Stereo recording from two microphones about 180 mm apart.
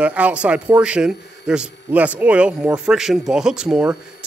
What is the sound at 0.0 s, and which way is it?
A man's voice, 5° right (ahead or behind).